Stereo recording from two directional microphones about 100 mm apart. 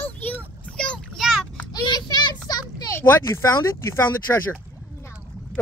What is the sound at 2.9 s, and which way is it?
Speech, 30° left (ahead or behind).